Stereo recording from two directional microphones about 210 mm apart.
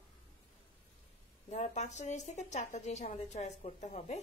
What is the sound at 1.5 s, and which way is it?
Speech, 35° left (ahead or behind).